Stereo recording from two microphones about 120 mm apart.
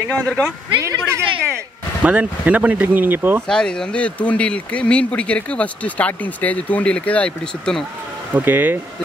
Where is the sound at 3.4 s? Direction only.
5° left (ahead or behind).